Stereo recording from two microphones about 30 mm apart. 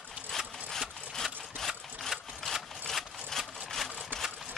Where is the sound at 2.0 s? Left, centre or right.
Centre.